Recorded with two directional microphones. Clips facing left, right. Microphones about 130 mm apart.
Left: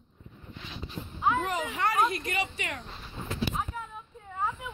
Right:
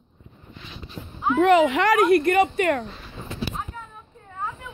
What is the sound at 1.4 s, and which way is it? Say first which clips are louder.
Speech: right 13 dB; 90° right.